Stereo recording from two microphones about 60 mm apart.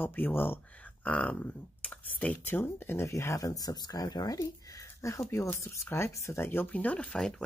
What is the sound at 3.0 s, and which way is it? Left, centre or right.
Speech, left.